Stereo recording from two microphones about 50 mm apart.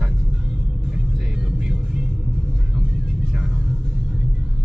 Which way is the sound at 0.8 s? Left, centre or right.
Centre.